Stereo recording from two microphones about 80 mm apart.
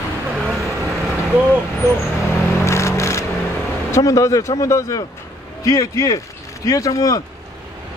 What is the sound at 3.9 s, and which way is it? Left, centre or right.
Speech, left.